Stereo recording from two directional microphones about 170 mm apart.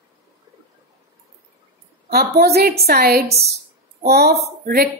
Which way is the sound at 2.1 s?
65° right (ahead or behind).